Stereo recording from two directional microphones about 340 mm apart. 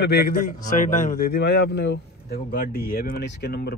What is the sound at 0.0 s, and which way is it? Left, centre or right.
A man's voice, left.